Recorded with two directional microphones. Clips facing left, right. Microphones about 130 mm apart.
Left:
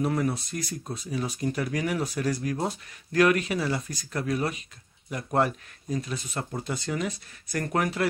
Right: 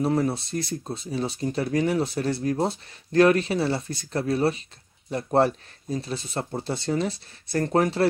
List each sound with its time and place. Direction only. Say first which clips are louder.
0.0 s speech: right 3 dB; 30° right (ahead or behind)